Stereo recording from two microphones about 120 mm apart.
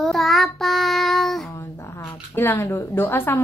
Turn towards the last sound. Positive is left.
turn(degrees=20)  # may be behind; listen again after turning